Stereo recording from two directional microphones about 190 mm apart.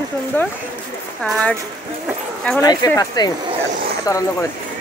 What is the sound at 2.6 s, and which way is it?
Speech, 20° left (ahead or behind).